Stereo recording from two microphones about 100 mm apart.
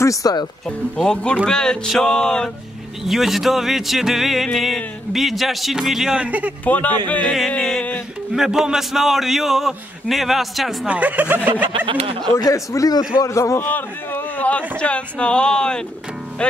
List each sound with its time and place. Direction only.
0.0 s speech: 35° left (ahead or behind)
0.7 s speech: 10° left (ahead or behind); by 6.5 s 15° right (ahead or behind)
6.6 s speech: 15° left (ahead or behind)
8.3 s speech: 5° right (ahead or behind)
10.9 s speech: 15° right (ahead or behind)
11.7 s speech: 55° right (ahead or behind)
12.4 s a man's voice: 35° left (ahead or behind)
13.7 s speech: 15° left (ahead or behind)